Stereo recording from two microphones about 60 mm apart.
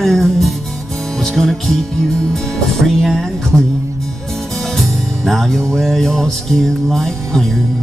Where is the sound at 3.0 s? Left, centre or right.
Centre.